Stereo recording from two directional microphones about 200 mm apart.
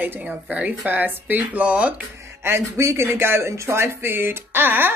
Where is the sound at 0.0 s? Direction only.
10° right (ahead or behind).